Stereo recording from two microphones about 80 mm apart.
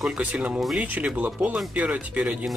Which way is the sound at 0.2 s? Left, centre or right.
Centre.